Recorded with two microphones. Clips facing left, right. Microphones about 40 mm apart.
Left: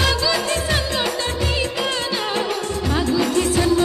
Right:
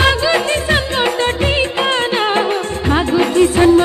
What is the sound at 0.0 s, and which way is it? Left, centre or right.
Music, right.